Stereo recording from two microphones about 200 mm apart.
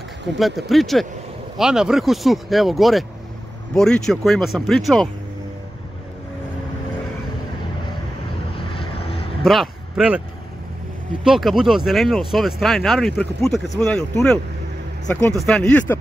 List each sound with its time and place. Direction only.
0.4 s speech: centre (ahead or behind)
8.5 s vehicle: 25° left (ahead or behind)
9.4 s speech: centre (ahead or behind)
11.2 s speech: centre (ahead or behind)